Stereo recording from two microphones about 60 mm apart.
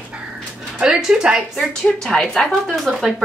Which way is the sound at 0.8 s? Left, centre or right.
Centre.